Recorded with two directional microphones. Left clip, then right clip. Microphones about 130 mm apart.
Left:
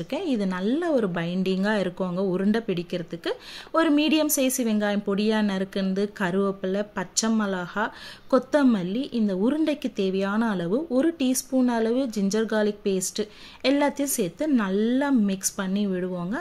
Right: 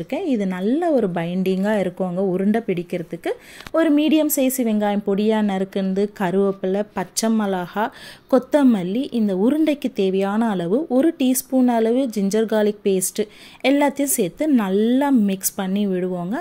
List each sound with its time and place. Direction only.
0.1 s speech: 20° right (ahead or behind)